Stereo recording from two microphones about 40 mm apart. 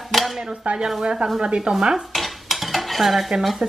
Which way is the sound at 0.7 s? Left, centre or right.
Right.